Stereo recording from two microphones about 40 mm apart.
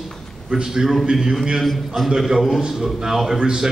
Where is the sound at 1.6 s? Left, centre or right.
Centre.